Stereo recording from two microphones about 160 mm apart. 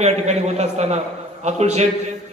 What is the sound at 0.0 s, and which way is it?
A man's voice, 45° right (ahead or behind).